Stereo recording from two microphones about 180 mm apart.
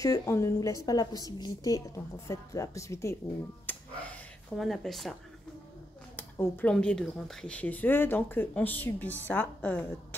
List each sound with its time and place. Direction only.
0.0 s a woman's voice: 20° left (ahead or behind)
3.6 s a sound: 5° left (ahead or behind)
6.1 s speech: 10° left (ahead or behind)